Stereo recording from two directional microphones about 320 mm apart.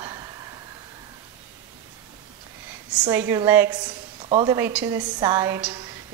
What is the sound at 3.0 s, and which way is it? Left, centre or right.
A woman's voice, centre.